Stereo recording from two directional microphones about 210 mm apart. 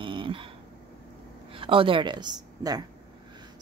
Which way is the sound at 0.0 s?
25° right (ahead or behind).